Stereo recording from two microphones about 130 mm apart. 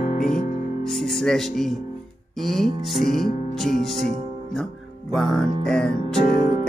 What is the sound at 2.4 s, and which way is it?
Speech, centre (ahead or behind).